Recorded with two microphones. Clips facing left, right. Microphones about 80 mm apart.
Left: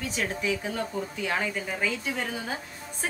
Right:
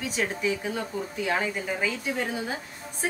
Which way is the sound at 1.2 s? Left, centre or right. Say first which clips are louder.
Right 2 dB; right.